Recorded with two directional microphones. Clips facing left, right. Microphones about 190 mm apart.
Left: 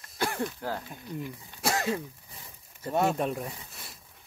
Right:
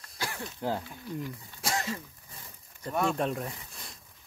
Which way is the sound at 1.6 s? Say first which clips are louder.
Left 4 dB; 60° left (ahead or behind).